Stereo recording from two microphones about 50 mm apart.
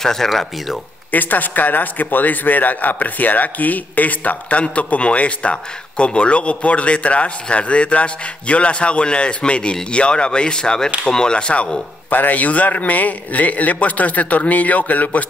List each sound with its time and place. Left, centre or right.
0.0 s speech: centre
1.1 s a man's voice: left; by 11.8 s centre
12.1 s a man's voice: left